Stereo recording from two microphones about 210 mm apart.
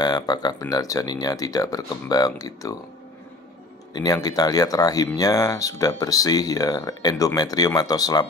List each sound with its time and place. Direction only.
0.0 s speech: 20° left (ahead or behind)
3.9 s speech: 20° left (ahead or behind)